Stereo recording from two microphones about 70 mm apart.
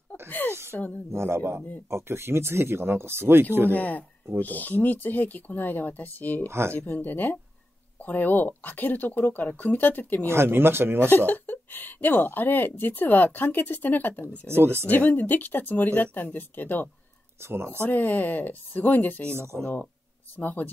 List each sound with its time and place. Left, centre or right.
0.3 s speech: left
1.1 s speech: right
3.7 s speech: left
6.4 s speech: right
6.9 s speech: left
10.2 s speech: right
11.1 s speech: left
14.5 s speech: right
14.9 s speech: left
17.4 s speech: right
17.7 s speech: left
19.3 s speech: right
20.3 s speech: left